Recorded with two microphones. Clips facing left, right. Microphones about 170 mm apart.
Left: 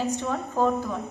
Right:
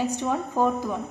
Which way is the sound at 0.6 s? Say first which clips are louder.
Even; 15° right (ahead or behind).